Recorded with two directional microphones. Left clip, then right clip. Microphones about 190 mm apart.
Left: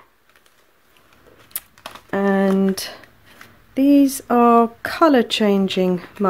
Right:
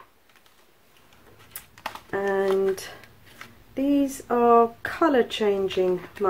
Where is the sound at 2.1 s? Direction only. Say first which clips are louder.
Left 5 dB; 45° left (ahead or behind).